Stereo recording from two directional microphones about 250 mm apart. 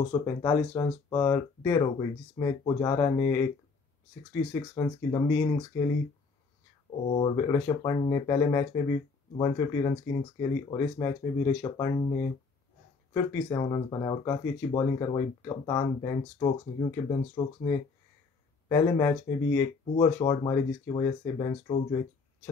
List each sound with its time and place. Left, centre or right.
0.1 s speech: centre
7.2 s speech: centre